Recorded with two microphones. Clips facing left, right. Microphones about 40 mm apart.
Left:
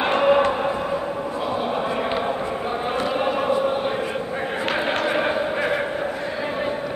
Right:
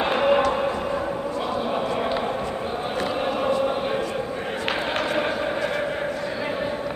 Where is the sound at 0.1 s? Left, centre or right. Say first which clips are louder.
Left 3 dB; centre.